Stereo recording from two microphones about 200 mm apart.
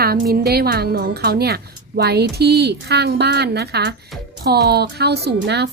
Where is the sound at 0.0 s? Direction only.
50° right (ahead or behind).